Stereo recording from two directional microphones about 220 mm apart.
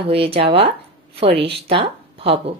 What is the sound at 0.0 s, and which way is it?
A woman's voice, 25° right (ahead or behind).